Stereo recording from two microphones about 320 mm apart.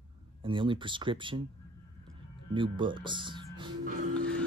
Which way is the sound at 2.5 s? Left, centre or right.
Centre.